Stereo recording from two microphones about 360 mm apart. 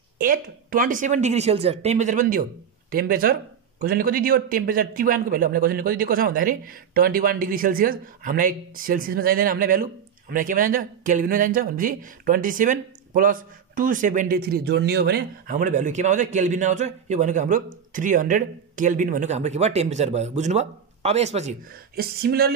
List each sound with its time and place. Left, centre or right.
0.2 s speech: right